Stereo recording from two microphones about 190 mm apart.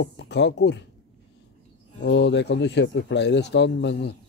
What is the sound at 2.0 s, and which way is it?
Speech, 65° left (ahead or behind).